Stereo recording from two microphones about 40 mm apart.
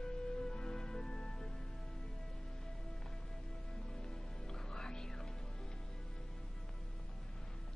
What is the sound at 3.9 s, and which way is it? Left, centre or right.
Music, centre.